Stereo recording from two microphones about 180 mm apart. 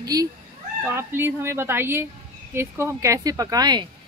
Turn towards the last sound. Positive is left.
turn(degrees=-20)  # may be behind; listen again after turning